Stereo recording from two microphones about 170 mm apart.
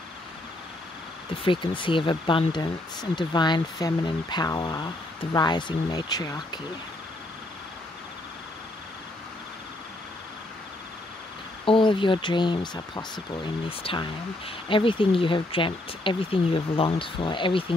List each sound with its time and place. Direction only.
1.4 s speech: 30° left (ahead or behind)
11.6 s speech: 30° left (ahead or behind)